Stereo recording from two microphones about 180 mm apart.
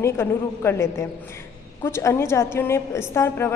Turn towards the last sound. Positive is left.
turn(degrees=15)  # may be behind; listen again after turning